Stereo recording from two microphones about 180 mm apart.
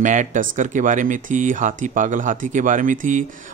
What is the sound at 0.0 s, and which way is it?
Speech, 45° right (ahead or behind).